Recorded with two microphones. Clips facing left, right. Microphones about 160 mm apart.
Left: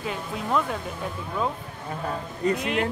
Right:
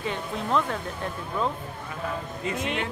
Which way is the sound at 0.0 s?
5° left (ahead or behind).